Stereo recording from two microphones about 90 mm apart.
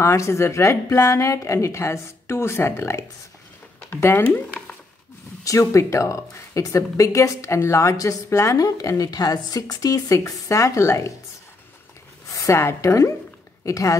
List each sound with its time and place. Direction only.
0.0 s speech: 30° left (ahead or behind)
4.2 s speech: 10° left (ahead or behind)
5.4 s speech: 40° left (ahead or behind)
12.3 s a woman's voice: 30° left (ahead or behind)